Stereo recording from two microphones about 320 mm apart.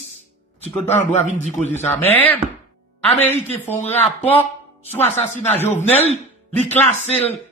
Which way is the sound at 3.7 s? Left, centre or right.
Centre.